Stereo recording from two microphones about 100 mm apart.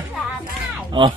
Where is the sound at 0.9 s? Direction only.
55° right (ahead or behind).